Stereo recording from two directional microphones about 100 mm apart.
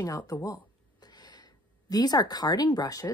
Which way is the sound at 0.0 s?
35° left (ahead or behind).